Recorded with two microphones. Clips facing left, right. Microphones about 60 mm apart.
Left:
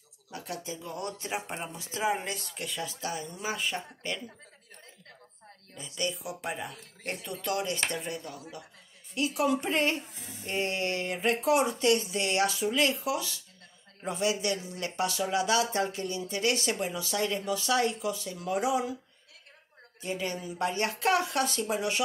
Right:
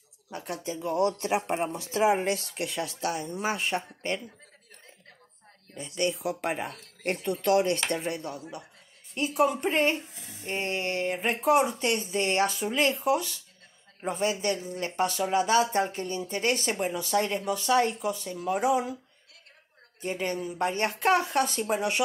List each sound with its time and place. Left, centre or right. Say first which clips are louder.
0.3 s speech: right 3 dB; right
0.7 s speech: right 11 dB; right
2.2 s speech: right 7 dB; right
3.3 s speech: right 4 dB; right
5.8 s speech: right 5 dB; right
9.1 s speech: right 2 dB; right
11.5 s speech: right 1 dB; right
20.0 s speech: right 3 dB; right